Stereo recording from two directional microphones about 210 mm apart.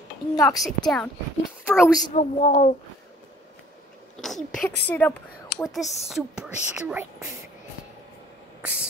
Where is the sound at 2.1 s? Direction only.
35° left (ahead or behind).